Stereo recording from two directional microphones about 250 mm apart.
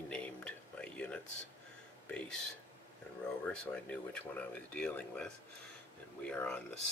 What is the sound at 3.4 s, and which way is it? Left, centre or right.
Speech, centre.